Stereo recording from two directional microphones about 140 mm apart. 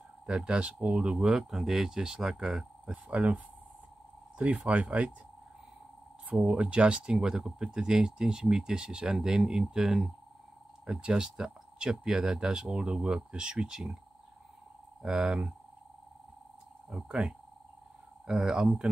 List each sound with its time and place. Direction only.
0.3 s speech: 5° right (ahead or behind)
6.2 s speech: 5° right (ahead or behind)
15.0 s speech: 5° right (ahead or behind)
16.9 s speech: centre (ahead or behind)